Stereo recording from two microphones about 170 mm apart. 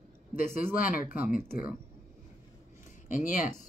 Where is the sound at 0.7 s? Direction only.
55° left (ahead or behind).